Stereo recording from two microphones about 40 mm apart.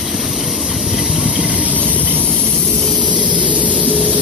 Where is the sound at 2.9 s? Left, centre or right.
Right.